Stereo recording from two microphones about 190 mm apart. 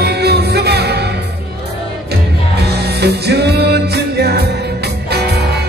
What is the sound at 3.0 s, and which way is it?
Music, 60° right (ahead or behind).